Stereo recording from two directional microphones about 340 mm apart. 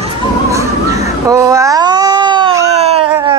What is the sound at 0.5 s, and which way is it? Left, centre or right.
Babbling, centre.